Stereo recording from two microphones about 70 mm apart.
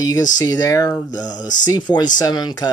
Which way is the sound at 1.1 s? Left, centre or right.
Left.